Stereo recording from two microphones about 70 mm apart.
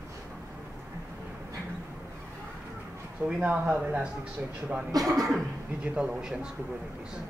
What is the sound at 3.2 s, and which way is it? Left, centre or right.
Speech, right.